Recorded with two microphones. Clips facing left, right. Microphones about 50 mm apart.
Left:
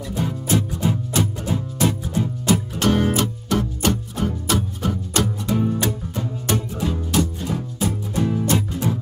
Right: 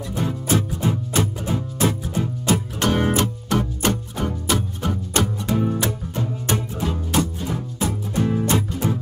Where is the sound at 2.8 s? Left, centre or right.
Centre.